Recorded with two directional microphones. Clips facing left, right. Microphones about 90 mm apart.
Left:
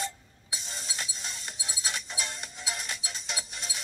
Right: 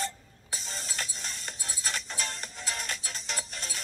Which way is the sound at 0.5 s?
5° left (ahead or behind).